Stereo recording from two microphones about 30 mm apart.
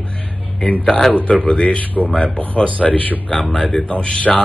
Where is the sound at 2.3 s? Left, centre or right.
Left.